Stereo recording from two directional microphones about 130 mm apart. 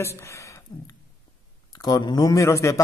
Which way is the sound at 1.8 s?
30° left (ahead or behind).